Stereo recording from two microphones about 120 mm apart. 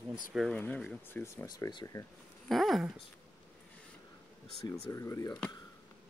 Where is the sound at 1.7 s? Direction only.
40° left (ahead or behind).